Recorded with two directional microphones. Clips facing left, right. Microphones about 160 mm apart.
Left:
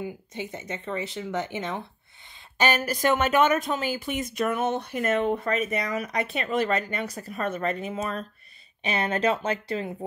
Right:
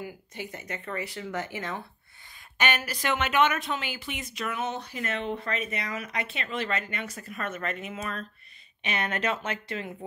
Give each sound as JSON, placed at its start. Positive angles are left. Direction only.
{"t": 0.0, "sound": "speech", "side_deg": 20}
{"t": 2.5, "sound": "speech", "side_deg": 35}